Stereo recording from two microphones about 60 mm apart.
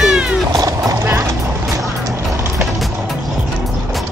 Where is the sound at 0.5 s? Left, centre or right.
Right.